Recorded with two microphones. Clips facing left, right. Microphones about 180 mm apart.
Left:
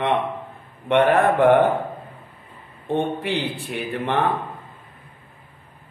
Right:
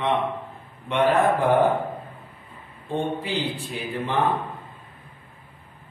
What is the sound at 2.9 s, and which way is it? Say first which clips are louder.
A man's voice: left 3 dB; 65° left (ahead or behind).